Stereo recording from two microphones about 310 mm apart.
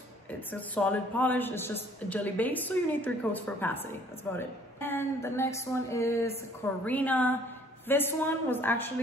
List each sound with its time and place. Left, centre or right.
0.5 s a woman's voice: centre